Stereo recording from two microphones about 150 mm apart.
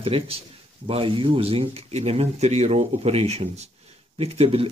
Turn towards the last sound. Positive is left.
turn(degrees=-40)  # may be behind; listen again after turning